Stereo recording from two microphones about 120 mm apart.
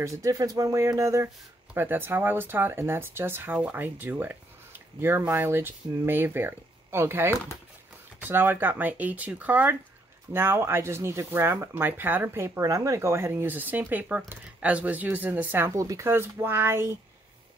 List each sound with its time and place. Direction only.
0.0 s speech: 25° right (ahead or behind)